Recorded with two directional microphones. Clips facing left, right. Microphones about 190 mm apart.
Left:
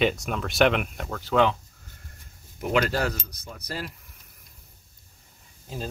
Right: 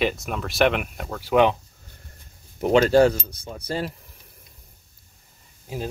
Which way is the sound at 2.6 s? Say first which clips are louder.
Right 9 dB; 30° right (ahead or behind).